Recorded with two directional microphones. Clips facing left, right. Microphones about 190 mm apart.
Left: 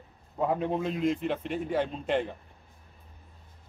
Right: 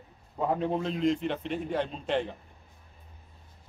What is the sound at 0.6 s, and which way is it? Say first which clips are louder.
A man's voice: even; 5° left (ahead or behind).